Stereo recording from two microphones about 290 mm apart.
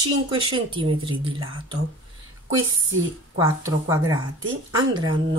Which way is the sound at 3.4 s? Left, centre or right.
Centre.